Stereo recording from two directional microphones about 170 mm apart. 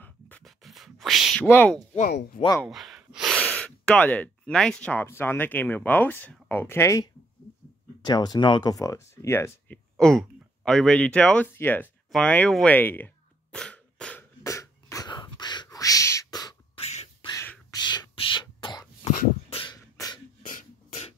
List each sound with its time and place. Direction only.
0.0 s a sound: 10° left (ahead or behind)
1.5 s speech: 10° left (ahead or behind)
2.3 s speech: 25° left (ahead or behind)
2.7 s speech: centre (ahead or behind); by 9.8 s 15° left (ahead or behind)
9.9 s speech: 5° left (ahead or behind)
14.4 s a sound: 20° left (ahead or behind)
15.3 s beatboxing: 25° left (ahead or behind)
17.3 s a sound: 15° left (ahead or behind)
19.5 s beatboxing: 25° left (ahead or behind)
20.4 s beatboxing: 45° left (ahead or behind)